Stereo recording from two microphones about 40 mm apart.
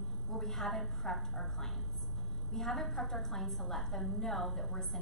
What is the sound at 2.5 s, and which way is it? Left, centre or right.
A woman's voice, centre.